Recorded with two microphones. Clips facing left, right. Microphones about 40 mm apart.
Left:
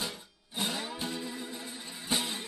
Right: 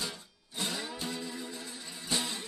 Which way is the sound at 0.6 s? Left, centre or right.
Left.